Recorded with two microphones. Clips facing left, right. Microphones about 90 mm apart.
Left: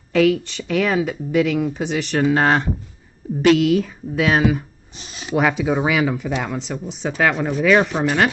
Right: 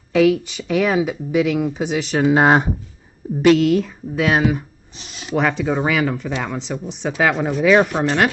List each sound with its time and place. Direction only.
0.1 s speech: 5° right (ahead or behind)
3.4 s speech: centre (ahead or behind)